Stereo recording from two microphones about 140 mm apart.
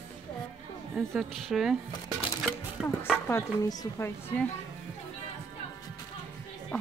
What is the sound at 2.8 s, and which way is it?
Speech, 5° right (ahead or behind).